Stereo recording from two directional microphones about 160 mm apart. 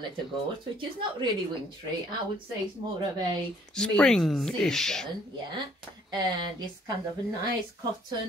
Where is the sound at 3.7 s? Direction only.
5° left (ahead or behind).